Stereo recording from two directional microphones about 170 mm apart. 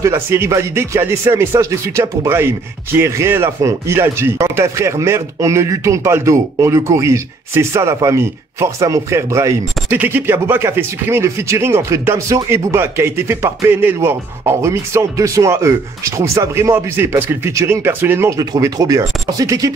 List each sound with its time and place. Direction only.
0.0 s speech: 15° right (ahead or behind)